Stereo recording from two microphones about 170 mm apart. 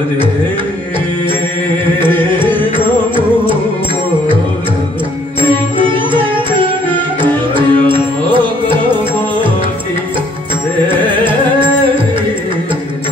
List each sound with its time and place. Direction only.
2.0 s music: 30° right (ahead or behind)
5.4 s music: 30° right (ahead or behind)